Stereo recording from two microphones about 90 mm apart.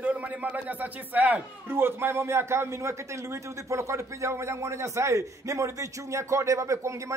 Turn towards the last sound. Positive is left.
turn(degrees=-35)  # may be behind; listen again after turning